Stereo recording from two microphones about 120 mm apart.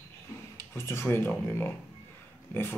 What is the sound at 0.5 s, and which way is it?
Speech, 20° left (ahead or behind).